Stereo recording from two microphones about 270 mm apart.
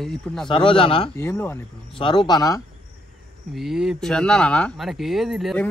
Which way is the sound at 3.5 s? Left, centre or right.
Centre.